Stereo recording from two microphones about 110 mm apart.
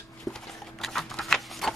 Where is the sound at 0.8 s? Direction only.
5° left (ahead or behind).